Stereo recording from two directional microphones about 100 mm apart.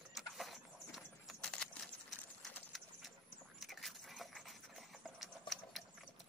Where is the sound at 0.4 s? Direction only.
Centre (ahead or behind).